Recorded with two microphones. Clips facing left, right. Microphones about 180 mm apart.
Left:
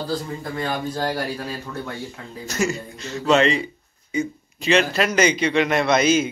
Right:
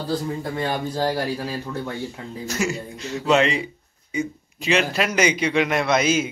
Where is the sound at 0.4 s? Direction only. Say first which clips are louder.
Right 1 dB; 30° right (ahead or behind).